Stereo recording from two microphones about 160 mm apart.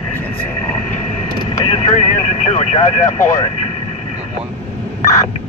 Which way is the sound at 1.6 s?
40° left (ahead or behind).